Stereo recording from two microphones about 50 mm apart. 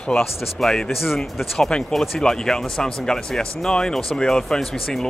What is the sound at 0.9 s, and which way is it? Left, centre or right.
Speech, centre.